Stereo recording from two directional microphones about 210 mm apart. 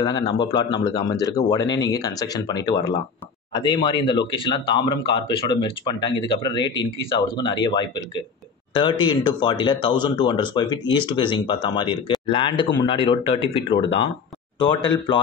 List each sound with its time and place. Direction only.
0.0 s speech: 20° left (ahead or behind)
14.6 s speech: 20° left (ahead or behind)